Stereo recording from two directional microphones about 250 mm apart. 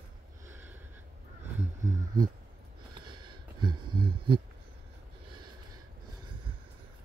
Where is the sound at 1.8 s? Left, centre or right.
Centre.